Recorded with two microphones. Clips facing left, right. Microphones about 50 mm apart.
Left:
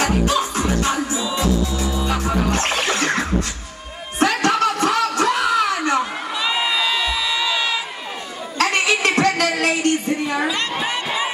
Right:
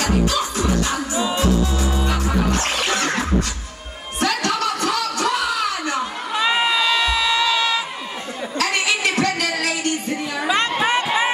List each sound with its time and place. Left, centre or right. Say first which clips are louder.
0.0 s music: left 1 dB; left
1.1 s music: right 2 dB; right
2.6 s music: left 1 dB; left
4.2 s a sound: left 4 dB; left
6.4 s crowd: right 3 dB; right
6.7 s crowd: right 2 dB; centre
8.5 s music: left 3 dB; left
10.5 s a sound: right 4 dB; right